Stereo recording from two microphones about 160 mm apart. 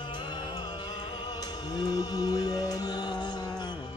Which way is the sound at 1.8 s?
25° left (ahead or behind).